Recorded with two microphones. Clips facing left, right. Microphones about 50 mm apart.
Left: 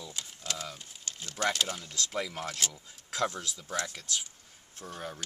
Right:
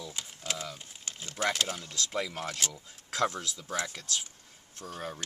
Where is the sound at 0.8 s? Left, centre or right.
Centre.